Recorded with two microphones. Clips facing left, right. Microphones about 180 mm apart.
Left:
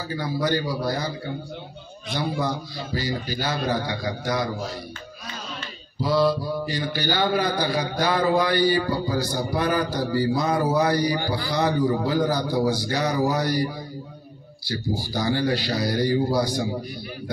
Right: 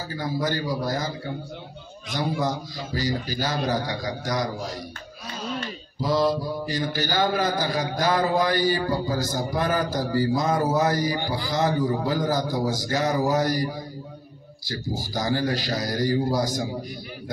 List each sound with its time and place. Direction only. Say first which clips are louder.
0.2 s a man's voice: left 2 dB; 45° right (ahead or behind)
11.1 s a man's voice: left 2 dB; 20° right (ahead or behind)
11.5 s a man's voice: left 1 dB; 45° right (ahead or behind)